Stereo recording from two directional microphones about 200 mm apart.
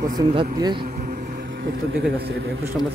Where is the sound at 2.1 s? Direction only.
60° right (ahead or behind).